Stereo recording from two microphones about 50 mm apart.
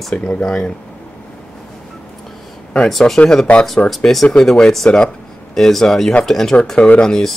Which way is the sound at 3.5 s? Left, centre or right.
Left.